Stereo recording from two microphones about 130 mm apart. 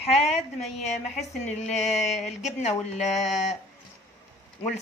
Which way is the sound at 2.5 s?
65° left (ahead or behind).